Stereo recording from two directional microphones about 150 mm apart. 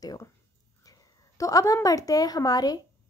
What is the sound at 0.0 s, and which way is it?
Speech, 25° left (ahead or behind).